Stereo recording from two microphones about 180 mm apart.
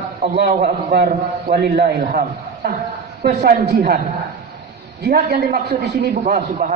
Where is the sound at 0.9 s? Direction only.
60° right (ahead or behind).